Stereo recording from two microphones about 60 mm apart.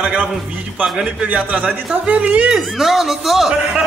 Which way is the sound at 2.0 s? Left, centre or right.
Right.